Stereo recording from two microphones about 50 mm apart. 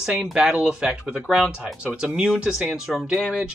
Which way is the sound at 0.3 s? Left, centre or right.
Centre.